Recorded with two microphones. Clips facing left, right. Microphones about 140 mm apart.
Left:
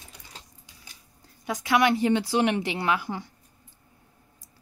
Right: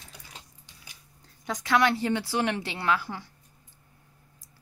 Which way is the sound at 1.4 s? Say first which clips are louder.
Left 2 dB; 10° left (ahead or behind).